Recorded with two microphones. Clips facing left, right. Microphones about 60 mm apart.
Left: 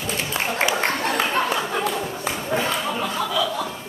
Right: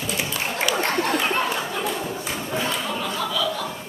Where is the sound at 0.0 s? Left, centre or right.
Centre.